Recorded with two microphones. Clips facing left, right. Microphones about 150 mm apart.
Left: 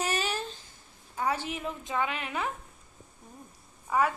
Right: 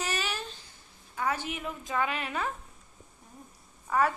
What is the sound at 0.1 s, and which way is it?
Babbling, 30° left (ahead or behind).